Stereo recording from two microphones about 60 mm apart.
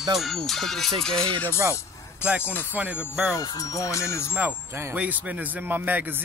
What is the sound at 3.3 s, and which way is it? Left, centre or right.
Music, left.